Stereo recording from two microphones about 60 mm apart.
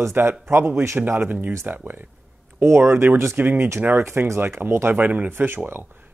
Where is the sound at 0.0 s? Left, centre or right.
Right.